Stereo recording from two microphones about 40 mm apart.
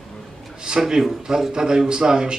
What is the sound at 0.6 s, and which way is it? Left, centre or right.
Speech, centre.